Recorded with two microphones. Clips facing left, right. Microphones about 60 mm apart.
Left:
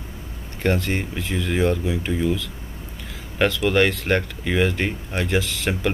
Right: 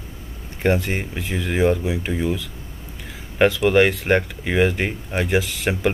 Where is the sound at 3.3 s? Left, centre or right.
Centre.